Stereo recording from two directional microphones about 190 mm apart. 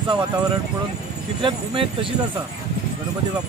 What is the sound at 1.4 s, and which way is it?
Speech, 25° right (ahead or behind).